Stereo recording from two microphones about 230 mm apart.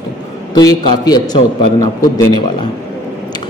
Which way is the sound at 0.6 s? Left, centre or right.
Centre.